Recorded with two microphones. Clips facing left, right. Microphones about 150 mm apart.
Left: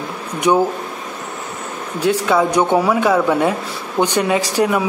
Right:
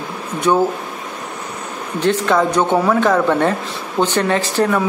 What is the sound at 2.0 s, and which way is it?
Speech, 10° left (ahead or behind).